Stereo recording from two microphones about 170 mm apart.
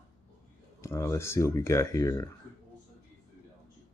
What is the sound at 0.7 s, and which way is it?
Speech, 15° left (ahead or behind).